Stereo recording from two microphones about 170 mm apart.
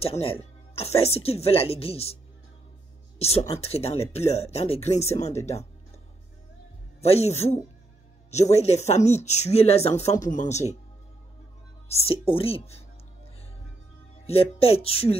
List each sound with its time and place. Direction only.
0.0 s speech: 35° left (ahead or behind)
3.2 s speech: 35° left (ahead or behind)
7.0 s speech: 40° left (ahead or behind)
11.9 s speech: 35° left (ahead or behind)
14.2 s speech: 35° left (ahead or behind)